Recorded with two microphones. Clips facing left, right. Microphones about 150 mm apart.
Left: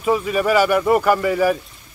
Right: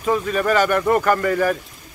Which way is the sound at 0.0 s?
10° left (ahead or behind).